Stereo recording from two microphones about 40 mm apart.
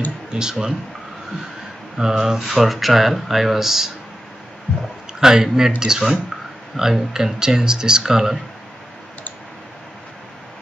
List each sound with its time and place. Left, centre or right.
0.3 s speech: centre
2.0 s speech: centre
2.4 s speech: centre
5.2 s speech: centre